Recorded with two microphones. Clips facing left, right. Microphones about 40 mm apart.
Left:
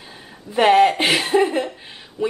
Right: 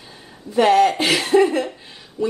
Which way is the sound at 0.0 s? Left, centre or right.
Centre.